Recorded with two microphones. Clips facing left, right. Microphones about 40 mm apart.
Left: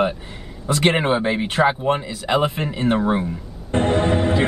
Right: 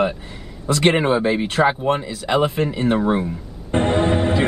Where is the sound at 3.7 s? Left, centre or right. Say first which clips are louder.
Right 1 dB; centre.